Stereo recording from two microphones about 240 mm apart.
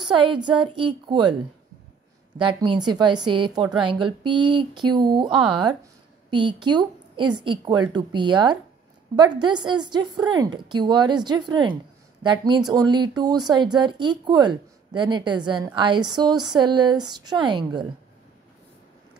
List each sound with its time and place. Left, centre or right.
0.2 s a woman's voice: centre
2.7 s a woman's voice: centre
5.3 s speech: centre
6.3 s a woman's voice: centre